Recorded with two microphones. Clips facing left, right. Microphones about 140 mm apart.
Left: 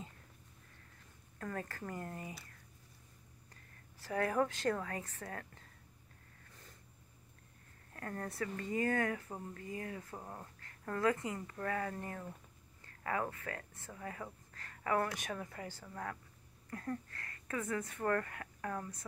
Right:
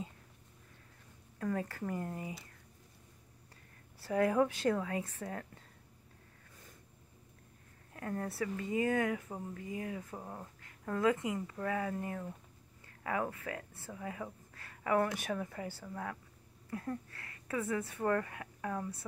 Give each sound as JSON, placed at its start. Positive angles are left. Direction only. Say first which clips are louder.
{"t": 1.4, "sound": "speech", "louder": "right 6 dB", "side_deg": -15}
{"t": 4.0, "sound": "speech", "louder": "right 4 dB", "side_deg": -15}
{"t": 7.9, "sound": "speech", "louder": "right 4 dB", "side_deg": -10}
{"t": 10.1, "sound": "speech", "louder": "right 2 dB", "side_deg": -5}